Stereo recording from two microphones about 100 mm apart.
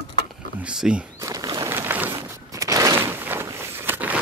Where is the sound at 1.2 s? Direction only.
35° right (ahead or behind).